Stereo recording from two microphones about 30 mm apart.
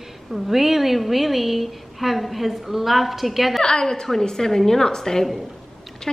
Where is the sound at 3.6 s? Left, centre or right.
Left.